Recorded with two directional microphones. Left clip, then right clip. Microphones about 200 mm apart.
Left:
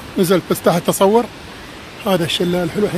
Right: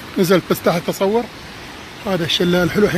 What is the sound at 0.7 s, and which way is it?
Speech, 20° left (ahead or behind).